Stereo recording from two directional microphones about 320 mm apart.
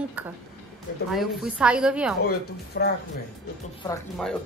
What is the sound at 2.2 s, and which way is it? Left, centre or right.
Speech, left.